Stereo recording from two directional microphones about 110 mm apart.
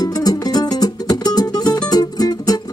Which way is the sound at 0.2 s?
35° left (ahead or behind).